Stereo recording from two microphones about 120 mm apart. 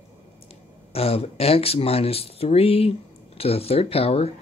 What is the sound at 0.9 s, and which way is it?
Speech, 55° left (ahead or behind).